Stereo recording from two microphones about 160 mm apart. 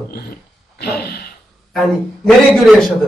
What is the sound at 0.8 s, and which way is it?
Gasp, 80° left.